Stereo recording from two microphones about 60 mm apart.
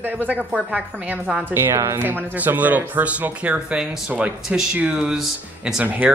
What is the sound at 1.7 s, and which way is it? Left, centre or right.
Speech, right.